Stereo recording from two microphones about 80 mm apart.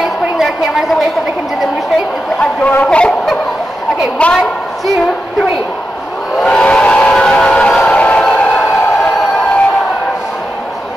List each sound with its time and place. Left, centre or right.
0.0 s a sound: centre
2.6 s speech: centre
4.2 s speech: centre
6.4 s train whistle: centre